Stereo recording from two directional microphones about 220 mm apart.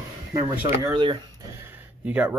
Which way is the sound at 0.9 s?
20° right (ahead or behind).